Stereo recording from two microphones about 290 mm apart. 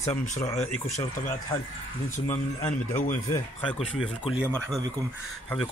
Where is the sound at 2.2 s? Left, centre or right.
Left.